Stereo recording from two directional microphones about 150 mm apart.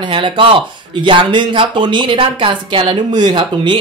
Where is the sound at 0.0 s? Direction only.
35° right (ahead or behind).